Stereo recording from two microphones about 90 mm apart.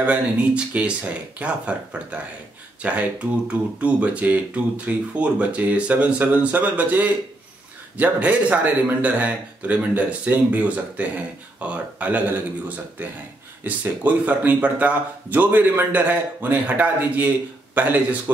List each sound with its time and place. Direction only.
0.0 s speech: 15° right (ahead or behind)